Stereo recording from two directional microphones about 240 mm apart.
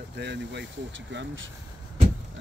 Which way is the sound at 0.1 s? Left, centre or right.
Right.